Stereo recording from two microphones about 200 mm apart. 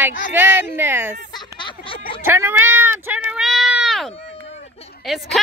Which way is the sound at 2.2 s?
10° right (ahead or behind).